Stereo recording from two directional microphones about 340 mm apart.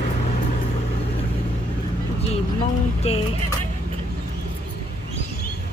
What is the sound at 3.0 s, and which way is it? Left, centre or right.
Speech, centre.